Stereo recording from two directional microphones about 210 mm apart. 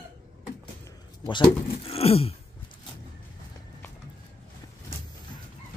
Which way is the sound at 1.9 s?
30° left (ahead or behind).